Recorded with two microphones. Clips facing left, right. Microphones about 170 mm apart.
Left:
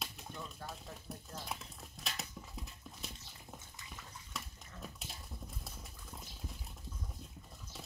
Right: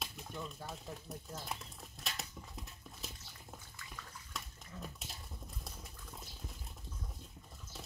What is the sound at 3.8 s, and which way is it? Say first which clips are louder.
Bathtub: even; 20° left (ahead or behind).